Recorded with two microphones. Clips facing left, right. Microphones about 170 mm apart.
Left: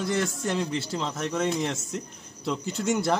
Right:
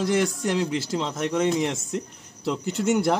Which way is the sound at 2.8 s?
15° right (ahead or behind).